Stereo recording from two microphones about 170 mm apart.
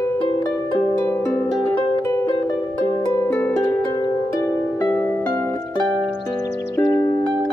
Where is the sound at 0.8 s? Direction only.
15° left (ahead or behind).